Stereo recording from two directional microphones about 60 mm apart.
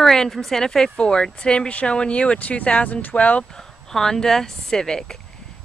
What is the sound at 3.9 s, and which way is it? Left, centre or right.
Speech, centre.